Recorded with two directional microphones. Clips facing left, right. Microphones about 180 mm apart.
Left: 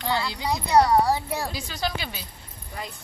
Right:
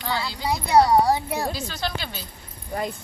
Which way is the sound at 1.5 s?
10° left (ahead or behind).